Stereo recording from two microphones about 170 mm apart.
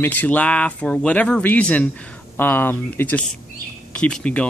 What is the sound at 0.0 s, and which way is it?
A man's voice, 10° left (ahead or behind).